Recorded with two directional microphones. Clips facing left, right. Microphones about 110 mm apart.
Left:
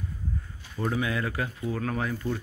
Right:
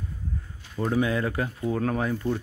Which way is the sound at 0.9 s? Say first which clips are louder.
Right 6 dB; 30° right (ahead or behind).